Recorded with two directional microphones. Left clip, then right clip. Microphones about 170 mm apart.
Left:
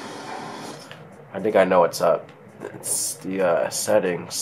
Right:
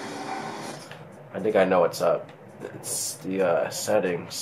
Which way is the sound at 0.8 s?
30° left (ahead or behind).